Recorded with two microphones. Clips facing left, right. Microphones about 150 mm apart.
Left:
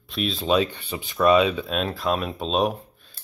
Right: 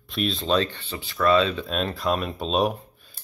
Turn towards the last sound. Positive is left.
turn(degrees=0)  # may be behind; listen again after turning